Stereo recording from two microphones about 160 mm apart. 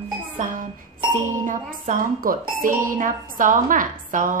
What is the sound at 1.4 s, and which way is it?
Speech, 55° right (ahead or behind).